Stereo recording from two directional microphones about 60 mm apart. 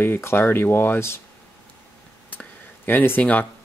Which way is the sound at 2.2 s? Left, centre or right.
Left.